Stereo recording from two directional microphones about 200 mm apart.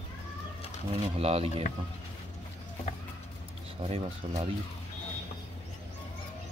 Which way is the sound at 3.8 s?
30° right (ahead or behind).